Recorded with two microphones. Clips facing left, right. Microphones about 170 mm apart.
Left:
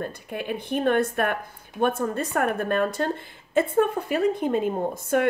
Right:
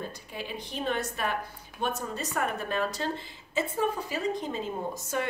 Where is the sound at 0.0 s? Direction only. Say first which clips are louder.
Left 7 dB; 55° left (ahead or behind).